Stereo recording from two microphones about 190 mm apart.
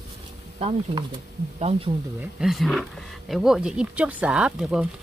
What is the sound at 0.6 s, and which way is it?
Speech, 35° right (ahead or behind).